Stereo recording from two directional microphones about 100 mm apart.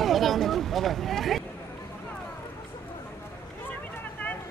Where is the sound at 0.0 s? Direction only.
Centre (ahead or behind).